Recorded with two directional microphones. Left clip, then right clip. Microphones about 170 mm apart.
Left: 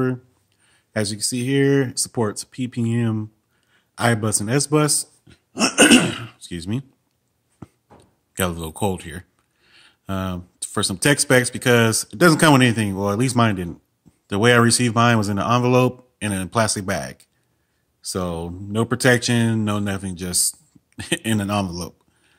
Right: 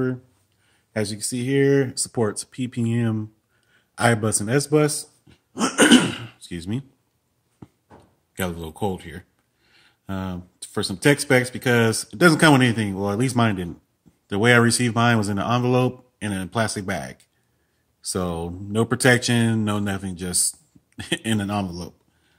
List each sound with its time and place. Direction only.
0.7 s speech: 25° left (ahead or behind)
6.2 s speech: 20° left (ahead or behind)
7.6 s a sound: 40° left (ahead or behind)
8.3 s speech: 35° left (ahead or behind)
18.0 s speech: 5° left (ahead or behind); by 22.4 s 35° left (ahead or behind)